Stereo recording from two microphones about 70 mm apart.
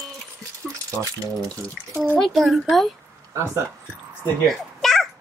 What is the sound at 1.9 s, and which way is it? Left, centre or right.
Speech, right.